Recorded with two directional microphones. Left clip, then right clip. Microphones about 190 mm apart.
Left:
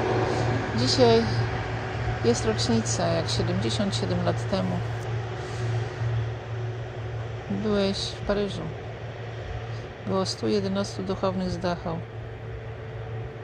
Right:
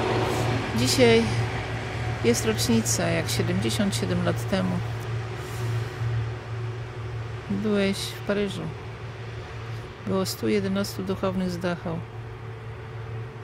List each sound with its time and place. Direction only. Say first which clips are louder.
0.1 s vehicle: even; centre (ahead or behind)
0.7 s speech: right 1 dB; 30° right (ahead or behind)
7.6 s speech: even; 25° right (ahead or behind)
10.1 s speech: even; 25° right (ahead or behind)